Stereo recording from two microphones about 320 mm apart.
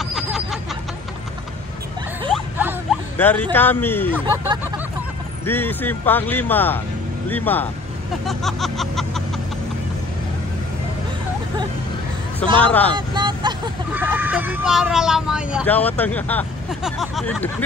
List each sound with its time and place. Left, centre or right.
0.0 s snicker: centre
2.3 s a sound: centre
3.5 s speech: centre
5.4 s speech: centre
12.6 s speech: centre
12.9 s speech: centre